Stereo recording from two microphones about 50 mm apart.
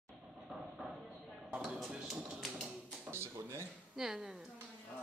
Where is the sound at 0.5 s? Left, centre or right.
Centre.